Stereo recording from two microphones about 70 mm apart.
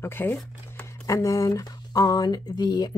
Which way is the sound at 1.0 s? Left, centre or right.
Left.